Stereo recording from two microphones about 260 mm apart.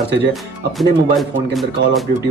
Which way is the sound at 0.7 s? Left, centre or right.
Centre.